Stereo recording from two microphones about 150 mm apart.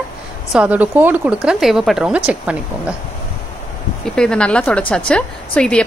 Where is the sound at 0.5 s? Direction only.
10° right (ahead or behind).